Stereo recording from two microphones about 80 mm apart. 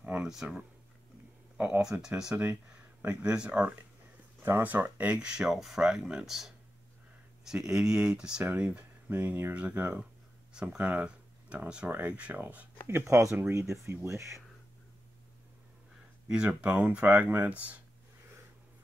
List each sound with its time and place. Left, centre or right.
0.0 s speech: centre
1.8 s speech: centre
8.5 s speech: right
10.8 s speech: right
12.8 s speech: right
16.3 s speech: centre